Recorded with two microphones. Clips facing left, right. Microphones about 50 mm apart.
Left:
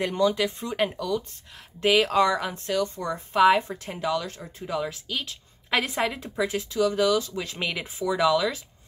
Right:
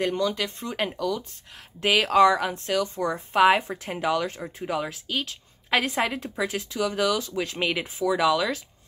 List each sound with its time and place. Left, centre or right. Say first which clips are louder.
0.2 s speech: left 3 dB; centre
3.0 s speech: right 1 dB; centre
3.9 s speech: right 2 dB; right
4.8 s a woman's voice: right 1 dB; centre